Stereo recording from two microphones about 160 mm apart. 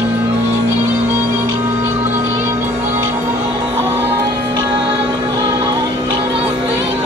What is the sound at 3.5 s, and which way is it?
Music, 30° right (ahead or behind).